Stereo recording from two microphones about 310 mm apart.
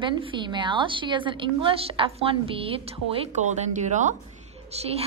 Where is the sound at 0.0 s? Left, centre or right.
Centre.